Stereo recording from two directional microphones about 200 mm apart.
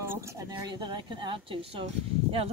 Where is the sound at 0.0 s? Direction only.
15° right (ahead or behind).